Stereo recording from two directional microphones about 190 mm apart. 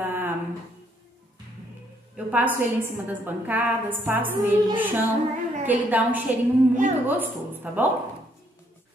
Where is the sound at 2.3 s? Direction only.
10° right (ahead or behind).